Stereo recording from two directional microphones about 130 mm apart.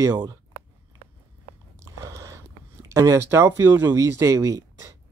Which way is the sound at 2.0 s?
25° right (ahead or behind).